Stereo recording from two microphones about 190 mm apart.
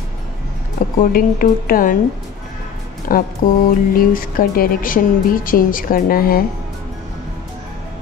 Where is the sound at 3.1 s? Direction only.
50° left (ahead or behind).